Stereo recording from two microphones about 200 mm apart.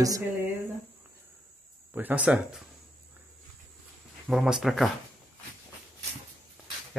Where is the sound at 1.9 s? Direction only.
10° right (ahead or behind).